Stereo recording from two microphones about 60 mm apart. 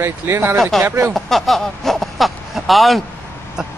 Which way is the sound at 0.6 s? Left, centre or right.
Centre.